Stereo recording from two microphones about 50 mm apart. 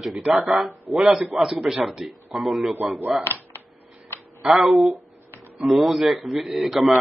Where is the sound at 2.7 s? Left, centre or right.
Right.